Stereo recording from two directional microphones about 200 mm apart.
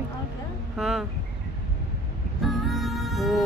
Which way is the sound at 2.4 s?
Centre (ahead or behind).